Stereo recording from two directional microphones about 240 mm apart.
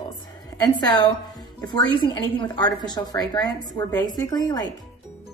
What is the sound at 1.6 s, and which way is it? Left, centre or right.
A woman's voice, centre.